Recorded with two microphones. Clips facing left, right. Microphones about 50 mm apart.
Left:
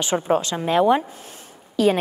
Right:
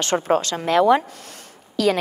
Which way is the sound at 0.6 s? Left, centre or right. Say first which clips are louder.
Right 2 dB; right.